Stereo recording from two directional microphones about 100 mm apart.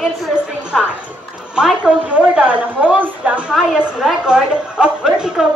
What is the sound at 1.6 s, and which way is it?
A woman's voice, 10° right (ahead or behind).